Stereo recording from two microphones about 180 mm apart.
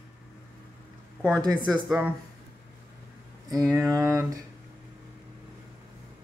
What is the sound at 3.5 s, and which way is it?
Speech, 15° right (ahead or behind).